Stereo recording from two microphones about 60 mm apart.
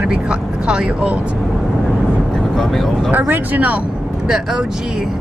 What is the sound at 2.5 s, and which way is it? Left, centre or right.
Speech, centre.